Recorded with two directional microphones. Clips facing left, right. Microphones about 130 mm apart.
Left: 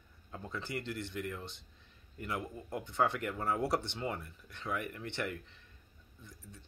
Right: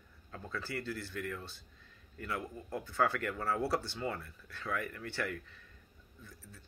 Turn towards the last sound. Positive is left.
turn(degrees=25)  # may be behind; listen again after turning